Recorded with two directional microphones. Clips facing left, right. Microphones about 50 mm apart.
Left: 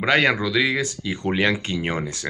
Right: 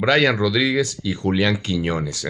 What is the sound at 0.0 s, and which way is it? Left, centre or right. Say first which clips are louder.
Speech: right 2 dB; left.